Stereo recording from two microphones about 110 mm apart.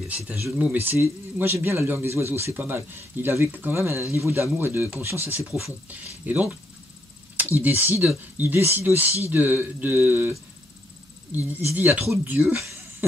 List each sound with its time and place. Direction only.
0.6 s speech: 15° right (ahead or behind)
11.3 s speech: 15° right (ahead or behind)